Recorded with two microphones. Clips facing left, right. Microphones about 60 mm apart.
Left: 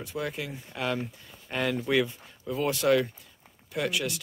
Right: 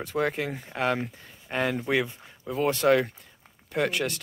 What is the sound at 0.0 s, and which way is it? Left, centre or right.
Speech, right.